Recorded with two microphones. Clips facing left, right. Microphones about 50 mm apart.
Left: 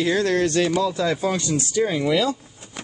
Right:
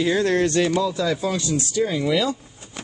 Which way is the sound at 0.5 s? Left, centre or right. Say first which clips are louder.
Even; centre.